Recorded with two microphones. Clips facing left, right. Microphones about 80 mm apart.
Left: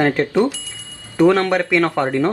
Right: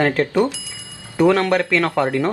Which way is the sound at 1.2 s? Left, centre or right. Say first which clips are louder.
Left 1 dB; centre.